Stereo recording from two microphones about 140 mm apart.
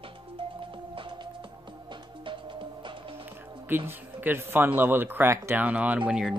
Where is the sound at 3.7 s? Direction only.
15° right (ahead or behind).